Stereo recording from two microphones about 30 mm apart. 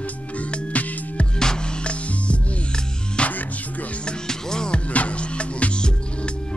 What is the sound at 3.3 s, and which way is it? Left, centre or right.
Music, left.